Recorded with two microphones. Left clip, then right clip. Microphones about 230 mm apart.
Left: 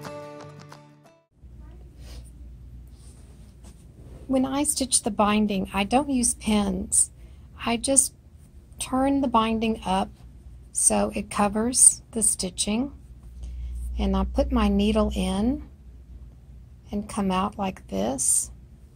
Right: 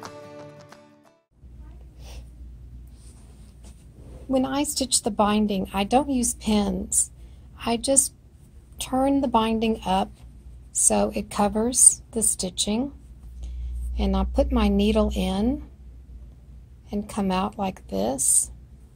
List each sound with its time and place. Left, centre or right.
0.0 s music: centre
4.3 s a woman's voice: centre
13.9 s a woman's voice: centre
16.9 s a woman's voice: centre